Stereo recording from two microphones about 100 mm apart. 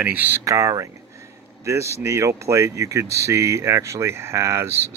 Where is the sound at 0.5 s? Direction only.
35° right (ahead or behind).